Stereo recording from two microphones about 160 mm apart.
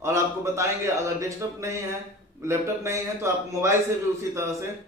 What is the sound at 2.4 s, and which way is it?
A man's voice, 15° right (ahead or behind).